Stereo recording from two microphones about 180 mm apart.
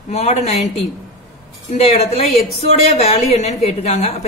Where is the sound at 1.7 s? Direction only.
35° left (ahead or behind).